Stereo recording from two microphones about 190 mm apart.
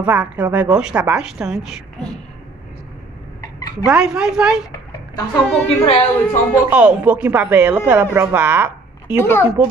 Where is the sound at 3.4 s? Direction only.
20° left (ahead or behind).